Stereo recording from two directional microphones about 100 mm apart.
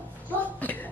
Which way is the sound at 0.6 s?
15° left (ahead or behind).